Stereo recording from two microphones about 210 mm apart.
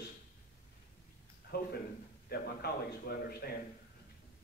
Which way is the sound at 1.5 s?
50° left (ahead or behind).